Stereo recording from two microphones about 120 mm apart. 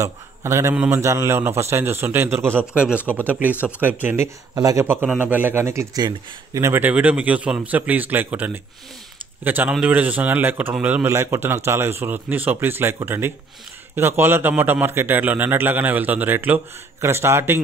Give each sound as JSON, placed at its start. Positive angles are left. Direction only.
{"t": 0.0, "sound": "a man's voice", "side_deg": -25}
{"t": 2.6, "sound": "a man's voice", "side_deg": -10}
{"t": 4.6, "sound": "speech", "side_deg": -30}
{"t": 4.8, "sound": "a man's voice", "side_deg": -20}